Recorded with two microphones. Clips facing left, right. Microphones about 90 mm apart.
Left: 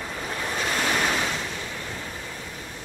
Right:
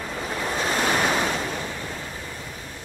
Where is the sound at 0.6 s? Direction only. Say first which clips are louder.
Right 2 dB; 25° right (ahead or behind).